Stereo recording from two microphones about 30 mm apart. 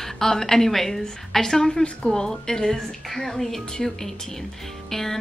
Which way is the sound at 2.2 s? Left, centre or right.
Centre.